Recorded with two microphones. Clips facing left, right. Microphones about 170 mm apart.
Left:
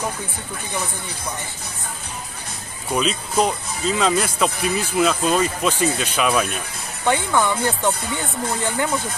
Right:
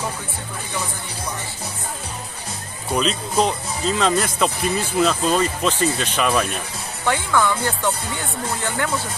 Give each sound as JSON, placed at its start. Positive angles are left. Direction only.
{"t": 2.9, "sound": "speech", "side_deg": 5}
{"t": 7.1, "sound": "speech", "side_deg": 20}